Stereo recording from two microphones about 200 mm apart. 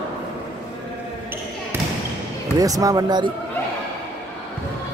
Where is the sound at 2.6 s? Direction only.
15° right (ahead or behind).